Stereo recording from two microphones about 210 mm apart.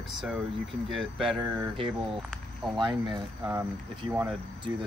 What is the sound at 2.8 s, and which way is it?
Speech, 20° right (ahead or behind).